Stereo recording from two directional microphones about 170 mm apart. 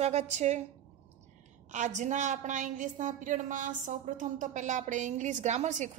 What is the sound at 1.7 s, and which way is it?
A woman's voice, 45° right (ahead or behind).